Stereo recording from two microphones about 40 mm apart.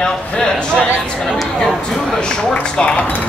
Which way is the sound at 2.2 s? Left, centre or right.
Left.